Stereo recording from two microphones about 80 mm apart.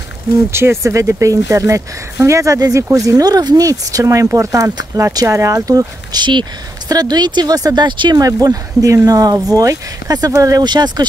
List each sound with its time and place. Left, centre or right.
0.5 s speech: right
3.1 s speech: right
6.1 s speech: right
6.9 s speech: right
8.3 s speech: right
10.6 s speech: right